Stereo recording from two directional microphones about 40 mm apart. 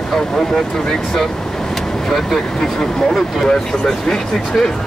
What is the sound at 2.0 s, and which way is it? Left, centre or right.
Speech, centre.